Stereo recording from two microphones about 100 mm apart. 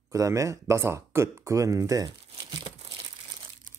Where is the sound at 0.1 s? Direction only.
30° right (ahead or behind); by 2.7 s 55° right (ahead or behind).